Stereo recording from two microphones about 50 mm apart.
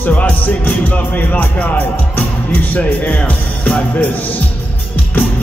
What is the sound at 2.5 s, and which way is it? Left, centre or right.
Music, left.